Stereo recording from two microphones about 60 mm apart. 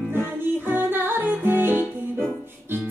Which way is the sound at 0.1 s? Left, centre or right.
Right.